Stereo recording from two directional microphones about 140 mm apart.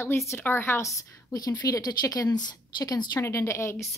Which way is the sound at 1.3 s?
25° left (ahead or behind).